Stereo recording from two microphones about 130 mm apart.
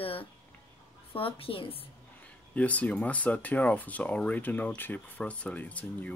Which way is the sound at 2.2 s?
10° left (ahead or behind).